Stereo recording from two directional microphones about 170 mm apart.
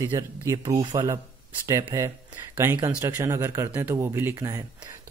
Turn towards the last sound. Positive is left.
turn(degrees=-20)  # may be behind; listen again after turning